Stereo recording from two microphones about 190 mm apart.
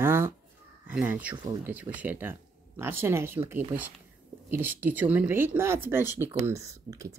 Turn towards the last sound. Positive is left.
turn(degrees=-15)  # may be behind; listen again after turning